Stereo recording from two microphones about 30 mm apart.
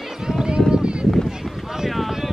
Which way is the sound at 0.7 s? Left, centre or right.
Right.